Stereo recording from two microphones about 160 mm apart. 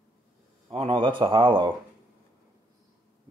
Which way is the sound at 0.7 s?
35° right (ahead or behind).